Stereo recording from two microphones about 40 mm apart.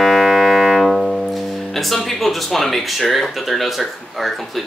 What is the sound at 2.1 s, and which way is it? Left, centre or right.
Speech, centre.